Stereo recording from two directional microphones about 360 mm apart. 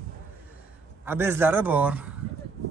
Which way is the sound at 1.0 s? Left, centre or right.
Centre.